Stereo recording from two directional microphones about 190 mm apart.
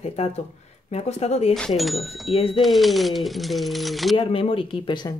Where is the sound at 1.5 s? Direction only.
Centre (ahead or behind).